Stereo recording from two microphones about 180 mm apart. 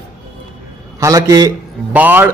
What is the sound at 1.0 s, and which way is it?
Speech, 20° right (ahead or behind).